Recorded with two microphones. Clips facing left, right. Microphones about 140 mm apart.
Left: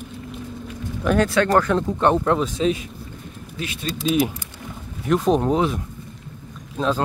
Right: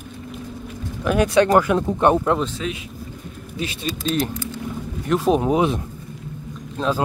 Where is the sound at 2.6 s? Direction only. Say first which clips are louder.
Left 7 dB; 30° left (ahead or behind).